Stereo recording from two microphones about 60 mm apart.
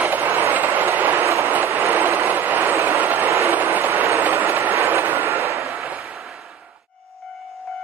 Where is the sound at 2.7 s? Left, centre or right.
Right.